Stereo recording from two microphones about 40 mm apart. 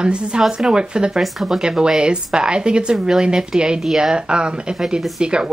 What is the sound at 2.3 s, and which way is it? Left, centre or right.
Speech, right.